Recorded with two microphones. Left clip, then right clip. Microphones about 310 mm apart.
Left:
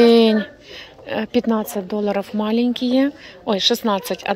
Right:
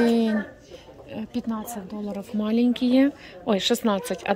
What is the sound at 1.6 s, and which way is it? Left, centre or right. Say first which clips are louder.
Speech: left 12 dB; left.